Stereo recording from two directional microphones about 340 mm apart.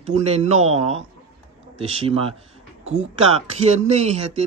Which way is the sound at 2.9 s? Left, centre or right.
Centre.